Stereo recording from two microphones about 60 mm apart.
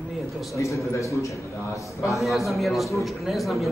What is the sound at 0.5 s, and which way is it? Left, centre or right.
A man's voice, left.